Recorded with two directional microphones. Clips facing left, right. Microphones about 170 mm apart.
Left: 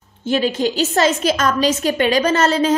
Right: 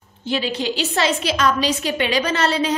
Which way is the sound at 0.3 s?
45° left (ahead or behind).